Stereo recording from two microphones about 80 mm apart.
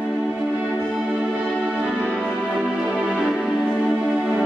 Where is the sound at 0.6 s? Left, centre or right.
Centre.